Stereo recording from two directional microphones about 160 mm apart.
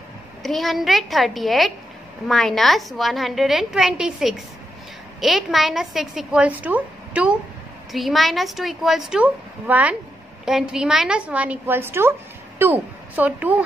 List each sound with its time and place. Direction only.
0.4 s a woman's voice: centre (ahead or behind)